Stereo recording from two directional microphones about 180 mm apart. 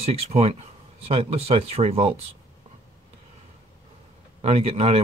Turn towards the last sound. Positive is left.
turn(degrees=-35)  # may be behind; listen again after turning